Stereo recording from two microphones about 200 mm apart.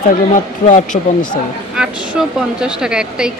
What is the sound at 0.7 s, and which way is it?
Speech, 40° left (ahead or behind).